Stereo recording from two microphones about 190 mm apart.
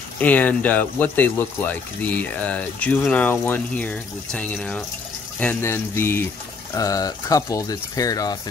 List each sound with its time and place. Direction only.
0.2 s speech: 10° left (ahead or behind)